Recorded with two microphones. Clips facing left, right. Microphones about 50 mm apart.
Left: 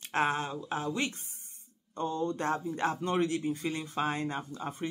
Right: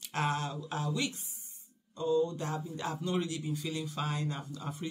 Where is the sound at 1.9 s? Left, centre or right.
Left.